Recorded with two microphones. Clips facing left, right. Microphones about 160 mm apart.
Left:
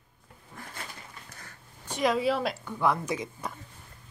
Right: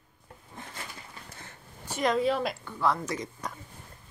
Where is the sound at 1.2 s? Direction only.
25° right (ahead or behind).